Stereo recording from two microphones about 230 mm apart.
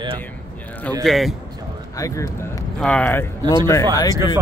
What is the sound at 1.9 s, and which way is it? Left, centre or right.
A man's voice, centre.